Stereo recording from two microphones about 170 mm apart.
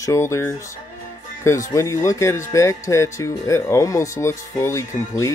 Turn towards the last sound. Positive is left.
turn(degrees=20)  # may be behind; listen again after turning